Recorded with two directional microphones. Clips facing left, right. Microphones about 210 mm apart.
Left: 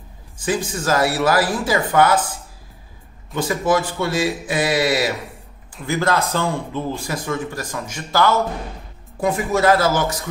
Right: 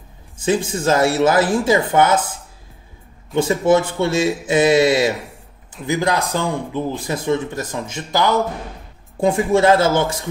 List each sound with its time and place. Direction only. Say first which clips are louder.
0.4 s speech: right 4 dB; 25° right (ahead or behind)
3.3 s a man's voice: right 4 dB; 25° right (ahead or behind)
9.2 s speech: right 3 dB; 25° right (ahead or behind)